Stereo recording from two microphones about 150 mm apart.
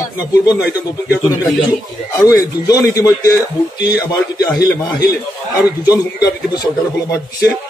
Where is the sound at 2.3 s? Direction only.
25° left (ahead or behind).